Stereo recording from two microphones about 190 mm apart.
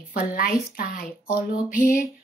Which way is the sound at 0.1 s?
50° left (ahead or behind).